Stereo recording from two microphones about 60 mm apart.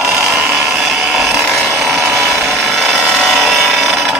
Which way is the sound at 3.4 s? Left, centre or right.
Centre.